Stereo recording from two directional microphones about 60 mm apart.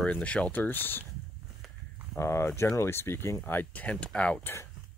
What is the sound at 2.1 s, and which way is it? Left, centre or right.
Speech, left.